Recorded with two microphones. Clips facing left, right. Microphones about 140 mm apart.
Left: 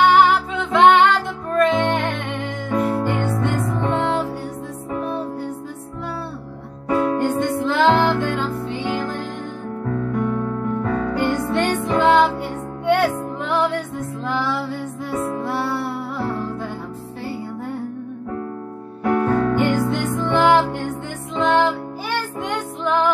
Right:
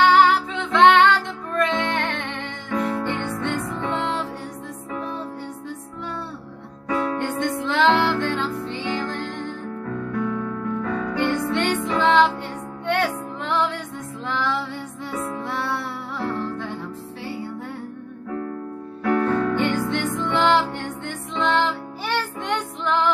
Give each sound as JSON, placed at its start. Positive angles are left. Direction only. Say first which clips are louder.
{"t": 0.0, "sound": "music", "louder": "left 2 dB", "side_deg": 10}
{"t": 6.9, "sound": "music", "louder": "left 5 dB", "side_deg": 10}
{"t": 10.9, "sound": "music", "louder": "left 2 dB", "side_deg": 35}
{"t": 11.8, "sound": "music", "louder": "left 2 dB", "side_deg": 5}
{"t": 19.0, "sound": "music", "louder": "left 2 dB", "side_deg": 15}